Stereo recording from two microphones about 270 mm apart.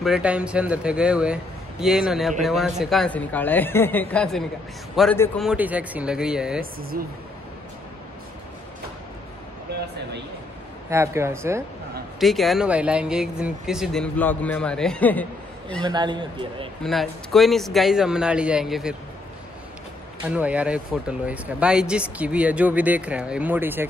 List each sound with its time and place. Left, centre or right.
0.0 s speech: centre
6.6 s speech: right
9.7 s a sound: right
10.9 s a man's voice: centre
15.8 s a man's voice: centre
16.8 s speech: centre
20.2 s speech: centre